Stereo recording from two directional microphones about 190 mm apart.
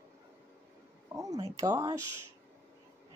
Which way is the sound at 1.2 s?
20° right (ahead or behind).